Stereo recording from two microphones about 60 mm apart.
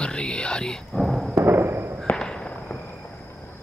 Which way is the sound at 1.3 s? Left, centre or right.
Right.